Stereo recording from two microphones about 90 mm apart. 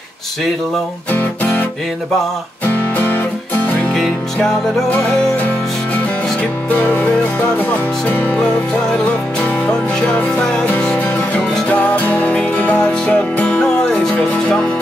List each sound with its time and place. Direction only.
1.1 s music: 20° left (ahead or behind)
3.9 s music: 5° left (ahead or behind)
6.8 s music: 15° left (ahead or behind)
10.0 s music: 15° left (ahead or behind)